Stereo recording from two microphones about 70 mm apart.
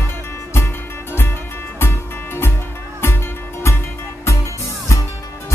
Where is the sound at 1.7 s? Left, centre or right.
Left.